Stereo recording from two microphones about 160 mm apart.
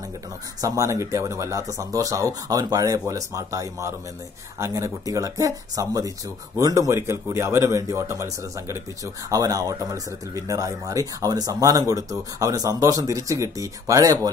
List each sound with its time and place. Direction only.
0.6 s speech: 20° right (ahead or behind)